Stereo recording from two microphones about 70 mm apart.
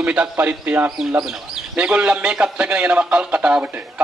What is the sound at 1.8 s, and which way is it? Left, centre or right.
A man's voice, centre.